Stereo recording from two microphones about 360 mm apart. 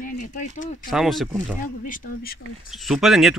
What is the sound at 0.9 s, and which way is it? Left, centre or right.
Speech, centre.